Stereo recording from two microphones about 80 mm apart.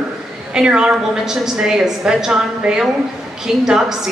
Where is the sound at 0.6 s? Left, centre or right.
Centre.